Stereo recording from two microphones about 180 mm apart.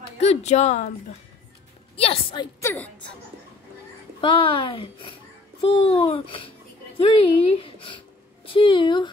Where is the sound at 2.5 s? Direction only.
10° left (ahead or behind).